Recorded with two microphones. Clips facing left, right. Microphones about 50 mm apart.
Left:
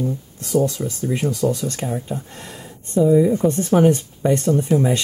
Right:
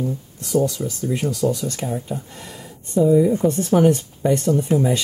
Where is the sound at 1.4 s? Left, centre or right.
Centre.